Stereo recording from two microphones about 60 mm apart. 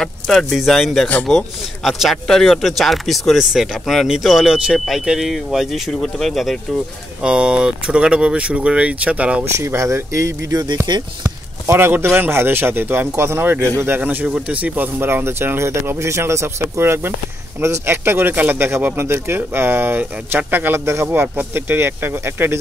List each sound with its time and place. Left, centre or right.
0.0 s speech: centre
7.2 s speech: centre
9.4 s speech: right
11.2 s a sound: right
12.2 s speech: right
13.9 s speech: right
15.0 s speech: right
20.8 s speech: right
21.1 s speech: right